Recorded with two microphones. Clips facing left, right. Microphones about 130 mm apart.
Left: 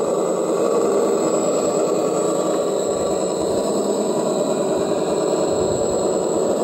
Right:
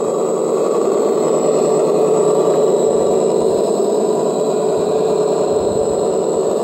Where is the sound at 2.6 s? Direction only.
45° right (ahead or behind).